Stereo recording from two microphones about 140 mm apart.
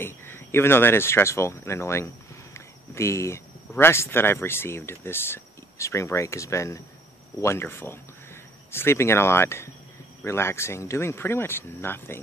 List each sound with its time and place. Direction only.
0.0 s speech: 15° left (ahead or behind)